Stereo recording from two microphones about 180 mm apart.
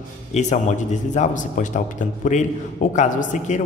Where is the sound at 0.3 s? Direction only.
40° left (ahead or behind).